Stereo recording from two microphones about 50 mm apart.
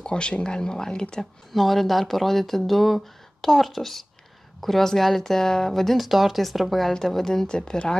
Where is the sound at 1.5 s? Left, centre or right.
Centre.